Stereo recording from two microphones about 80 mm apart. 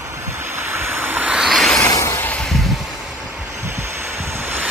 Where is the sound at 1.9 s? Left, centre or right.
Left.